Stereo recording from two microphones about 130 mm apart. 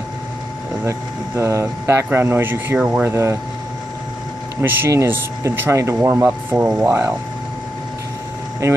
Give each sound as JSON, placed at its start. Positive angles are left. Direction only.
{"t": 0.8, "sound": "speech", "side_deg": -20}
{"t": 4.6, "sound": "speech", "side_deg": -15}